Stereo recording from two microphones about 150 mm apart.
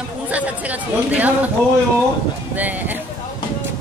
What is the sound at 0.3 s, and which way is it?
Speech, 10° right (ahead or behind).